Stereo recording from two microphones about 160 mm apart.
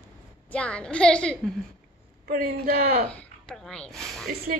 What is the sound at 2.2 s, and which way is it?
Speech, 65° right (ahead or behind).